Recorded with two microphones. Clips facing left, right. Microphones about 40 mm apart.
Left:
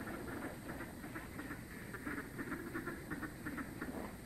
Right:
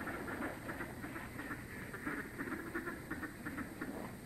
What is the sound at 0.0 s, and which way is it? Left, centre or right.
Vehicle, right.